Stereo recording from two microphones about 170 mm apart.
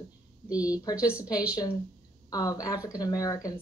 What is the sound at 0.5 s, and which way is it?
Speech, 10° right (ahead or behind).